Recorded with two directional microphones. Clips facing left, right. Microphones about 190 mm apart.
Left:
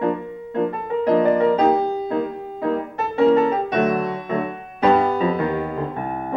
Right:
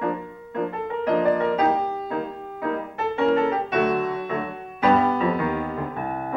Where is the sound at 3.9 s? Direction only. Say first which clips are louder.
Left 2 dB; 35° left (ahead or behind).